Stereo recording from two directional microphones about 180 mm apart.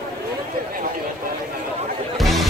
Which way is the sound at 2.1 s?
Centre (ahead or behind).